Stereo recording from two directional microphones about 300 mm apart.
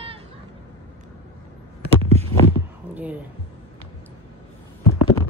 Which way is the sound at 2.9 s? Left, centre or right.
Centre.